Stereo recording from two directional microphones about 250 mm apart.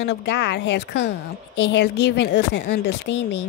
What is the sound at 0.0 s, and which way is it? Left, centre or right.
Speech, left.